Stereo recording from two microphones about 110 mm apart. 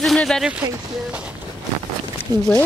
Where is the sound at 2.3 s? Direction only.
35° right (ahead or behind).